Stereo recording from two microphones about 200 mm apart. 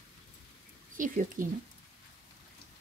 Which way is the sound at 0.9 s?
40° right (ahead or behind).